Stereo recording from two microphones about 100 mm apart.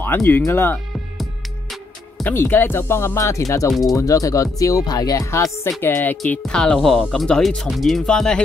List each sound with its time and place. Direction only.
0.0 s speech: 20° left (ahead or behind)
2.2 s speech: 20° left (ahead or behind)
6.4 s speech: 5° left (ahead or behind)